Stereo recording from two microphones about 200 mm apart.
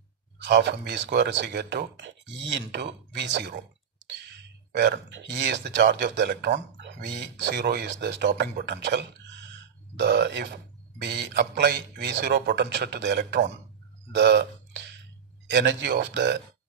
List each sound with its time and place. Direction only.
0.4 s speech: 60° right (ahead or behind)